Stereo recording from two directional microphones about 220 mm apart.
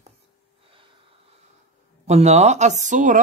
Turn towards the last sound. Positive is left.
turn(degrees=-35)  # may be behind; listen again after turning